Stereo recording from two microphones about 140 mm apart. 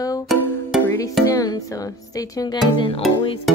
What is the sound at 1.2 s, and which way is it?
Speech, 25° left (ahead or behind).